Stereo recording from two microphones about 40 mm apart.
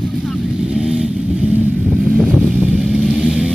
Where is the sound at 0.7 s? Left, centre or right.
Centre.